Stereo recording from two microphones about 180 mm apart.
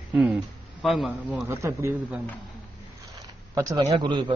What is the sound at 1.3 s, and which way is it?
Speech, 15° right (ahead or behind).